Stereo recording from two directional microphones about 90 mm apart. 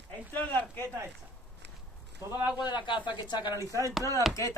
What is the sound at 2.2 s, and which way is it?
Speech, 30° right (ahead or behind).